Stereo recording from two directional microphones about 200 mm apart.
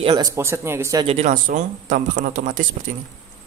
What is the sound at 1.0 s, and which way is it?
Speech, 35° right (ahead or behind).